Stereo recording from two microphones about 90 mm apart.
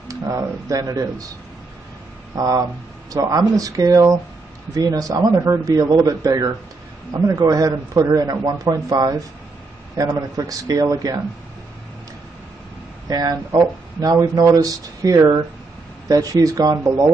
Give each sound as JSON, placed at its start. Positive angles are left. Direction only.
{"t": 0.1, "sound": "speech", "side_deg": -35}
{"t": 2.3, "sound": "speech", "side_deg": -40}
{"t": 13.1, "sound": "speech", "side_deg": -45}